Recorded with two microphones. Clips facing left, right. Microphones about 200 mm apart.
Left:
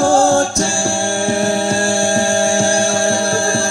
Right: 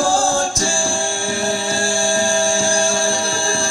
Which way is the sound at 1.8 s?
65° left (ahead or behind).